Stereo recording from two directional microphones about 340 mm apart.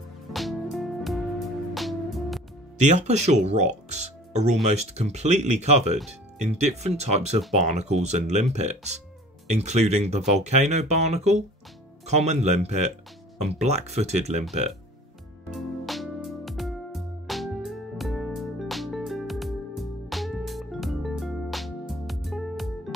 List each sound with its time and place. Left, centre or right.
0.3 s music: centre
2.8 s speech: centre
15.5 s music: centre